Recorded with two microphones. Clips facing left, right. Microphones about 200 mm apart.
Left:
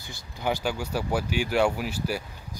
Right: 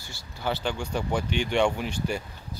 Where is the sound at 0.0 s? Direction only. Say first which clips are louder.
Left 2 dB; 15° left (ahead or behind).